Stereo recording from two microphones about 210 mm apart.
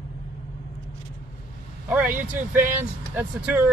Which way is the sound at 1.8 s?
10° right (ahead or behind).